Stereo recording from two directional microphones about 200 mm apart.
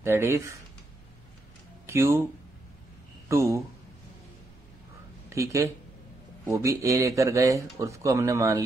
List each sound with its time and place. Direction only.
0.0 s speech: 15° right (ahead or behind)
1.9 s speech: 15° right (ahead or behind)
3.3 s speech: 15° right (ahead or behind)
5.3 s speech: 15° right (ahead or behind)